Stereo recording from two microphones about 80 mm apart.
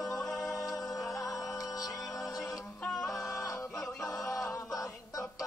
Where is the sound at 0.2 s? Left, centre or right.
Centre.